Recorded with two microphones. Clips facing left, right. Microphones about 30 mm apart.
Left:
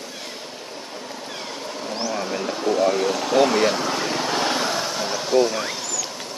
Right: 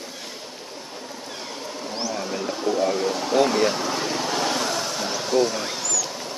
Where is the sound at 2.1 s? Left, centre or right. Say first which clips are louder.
Left 2 dB; left.